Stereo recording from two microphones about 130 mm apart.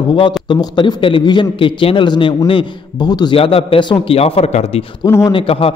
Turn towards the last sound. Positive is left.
turn(degrees=45)  # may be behind; listen again after turning